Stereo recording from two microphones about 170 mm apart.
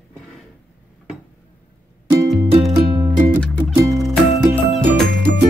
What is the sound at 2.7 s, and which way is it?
Music, 25° right (ahead or behind).